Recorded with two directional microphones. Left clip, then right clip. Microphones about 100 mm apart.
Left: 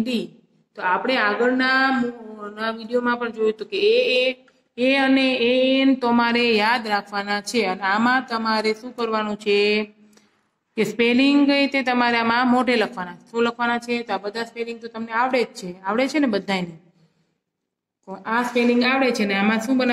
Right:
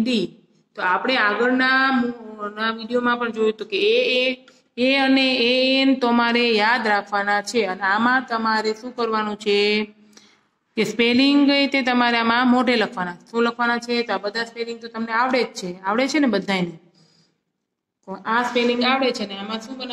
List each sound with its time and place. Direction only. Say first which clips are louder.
0.0 s a woman's voice: right 3 dB; 20° right (ahead or behind); by 9.0 s 5° right (ahead or behind)
9.0 s speech: right 1 dB; 20° right (ahead or behind)
13.7 s a woman's voice: right 2 dB; centre (ahead or behind)
14.0 s speech: right 2 dB; 40° right (ahead or behind)
14.8 s a woman's voice: right 2 dB; 5° right (ahead or behind)
15.6 s speech: right 1 dB; 20° right (ahead or behind)
18.5 s speech: left 3 dB; 30° right (ahead or behind)